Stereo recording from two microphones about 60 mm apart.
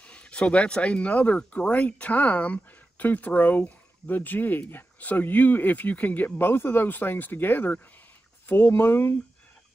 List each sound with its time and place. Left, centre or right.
0.0 s speech: centre; by 9.1 s left